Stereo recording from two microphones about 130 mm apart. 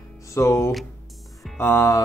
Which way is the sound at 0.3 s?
20° left (ahead or behind).